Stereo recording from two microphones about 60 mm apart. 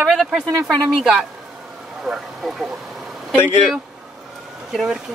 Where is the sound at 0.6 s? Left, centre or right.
Right.